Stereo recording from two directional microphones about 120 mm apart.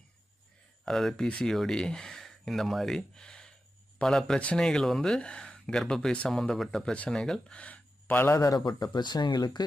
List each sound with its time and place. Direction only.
0.8 s speech: 5° left (ahead or behind)
8.3 s speech: 30° left (ahead or behind)